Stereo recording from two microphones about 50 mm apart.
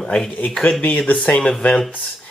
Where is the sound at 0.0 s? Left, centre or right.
Centre.